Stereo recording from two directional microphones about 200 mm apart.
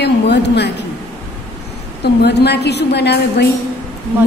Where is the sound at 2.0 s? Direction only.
55° left (ahead or behind).